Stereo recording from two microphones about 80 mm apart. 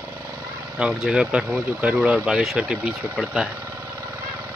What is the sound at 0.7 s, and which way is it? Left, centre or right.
Speech, centre.